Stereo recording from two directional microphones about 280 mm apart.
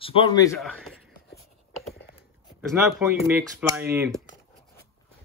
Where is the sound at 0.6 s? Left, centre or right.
Centre.